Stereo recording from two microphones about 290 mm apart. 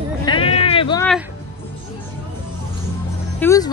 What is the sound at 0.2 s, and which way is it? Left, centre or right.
Sheep, centre.